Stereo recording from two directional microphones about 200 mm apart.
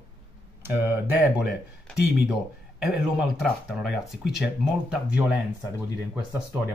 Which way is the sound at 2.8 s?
5° right (ahead or behind).